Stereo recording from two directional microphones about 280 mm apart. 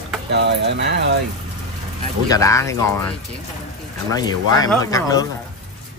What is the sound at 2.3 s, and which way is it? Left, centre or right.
Speech, centre.